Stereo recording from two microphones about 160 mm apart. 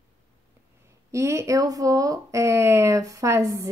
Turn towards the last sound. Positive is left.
turn(degrees=-20)  # may be behind; listen again after turning